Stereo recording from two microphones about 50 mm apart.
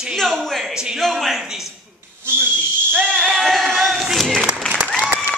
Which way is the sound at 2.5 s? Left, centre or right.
Left.